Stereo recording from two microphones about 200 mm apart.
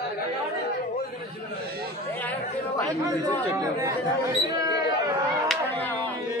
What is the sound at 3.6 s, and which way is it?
Speech, 15° right (ahead or behind).